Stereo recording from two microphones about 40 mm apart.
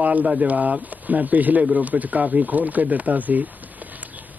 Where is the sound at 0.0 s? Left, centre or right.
Right.